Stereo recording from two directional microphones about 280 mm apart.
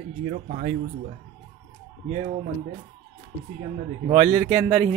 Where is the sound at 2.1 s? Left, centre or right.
Right.